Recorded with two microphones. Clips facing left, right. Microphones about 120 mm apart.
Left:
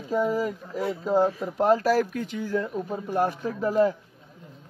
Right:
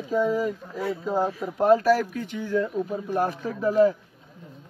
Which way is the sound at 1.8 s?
40° left (ahead or behind).